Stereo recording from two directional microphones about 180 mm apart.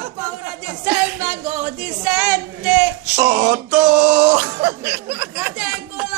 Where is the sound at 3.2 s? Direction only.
65° right (ahead or behind).